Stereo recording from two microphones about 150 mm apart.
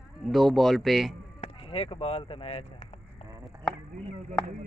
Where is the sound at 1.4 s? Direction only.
35° left (ahead or behind).